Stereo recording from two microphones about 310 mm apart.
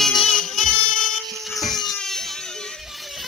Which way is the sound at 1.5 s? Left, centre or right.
Centre.